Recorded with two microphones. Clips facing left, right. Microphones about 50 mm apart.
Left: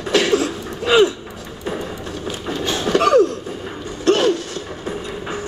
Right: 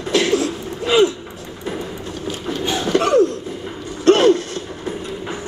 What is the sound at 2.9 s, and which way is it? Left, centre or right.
Cough, right.